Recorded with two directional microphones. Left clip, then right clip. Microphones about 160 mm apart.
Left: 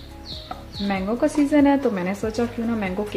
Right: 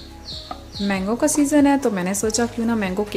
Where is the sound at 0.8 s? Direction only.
30° right (ahead or behind).